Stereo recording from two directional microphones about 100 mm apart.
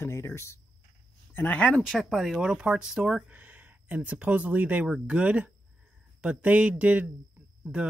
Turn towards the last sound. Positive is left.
turn(degrees=-10)  # may be behind; listen again after turning